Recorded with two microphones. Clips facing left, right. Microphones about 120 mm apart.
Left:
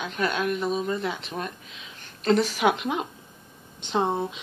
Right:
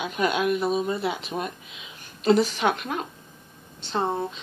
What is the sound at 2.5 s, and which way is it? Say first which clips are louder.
Speech: left 2 dB; 10° left (ahead or behind).